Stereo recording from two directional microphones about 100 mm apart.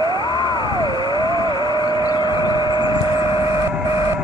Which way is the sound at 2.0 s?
45° left (ahead or behind).